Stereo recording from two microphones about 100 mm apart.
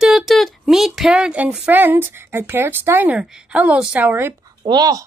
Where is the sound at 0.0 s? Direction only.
5° right (ahead or behind); by 4.4 s 20° right (ahead or behind).